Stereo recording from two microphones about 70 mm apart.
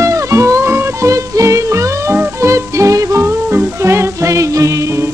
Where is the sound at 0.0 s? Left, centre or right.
Right.